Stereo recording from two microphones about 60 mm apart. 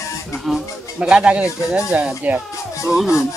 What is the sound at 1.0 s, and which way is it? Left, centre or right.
Speech, centre.